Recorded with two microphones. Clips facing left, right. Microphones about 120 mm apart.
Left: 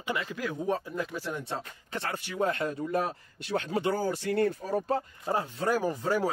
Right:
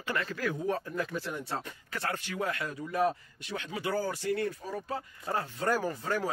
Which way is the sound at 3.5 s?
45° left (ahead or behind).